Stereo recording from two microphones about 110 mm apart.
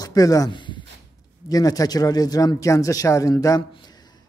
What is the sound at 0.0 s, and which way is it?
A woman's voice, 35° left (ahead or behind).